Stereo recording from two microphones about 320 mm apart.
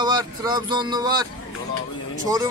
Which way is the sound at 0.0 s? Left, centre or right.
Centre.